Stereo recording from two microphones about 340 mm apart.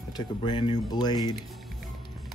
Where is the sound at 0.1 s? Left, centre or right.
Centre.